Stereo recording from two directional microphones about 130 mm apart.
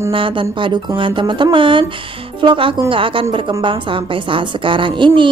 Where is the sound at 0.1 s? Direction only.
40° right (ahead or behind).